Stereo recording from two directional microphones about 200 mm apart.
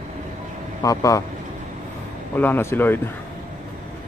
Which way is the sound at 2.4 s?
10° left (ahead or behind).